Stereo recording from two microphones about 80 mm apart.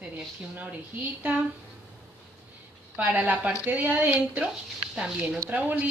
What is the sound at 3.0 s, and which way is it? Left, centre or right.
A woman's voice, centre.